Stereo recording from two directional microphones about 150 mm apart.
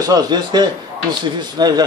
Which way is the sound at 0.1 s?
30° right (ahead or behind).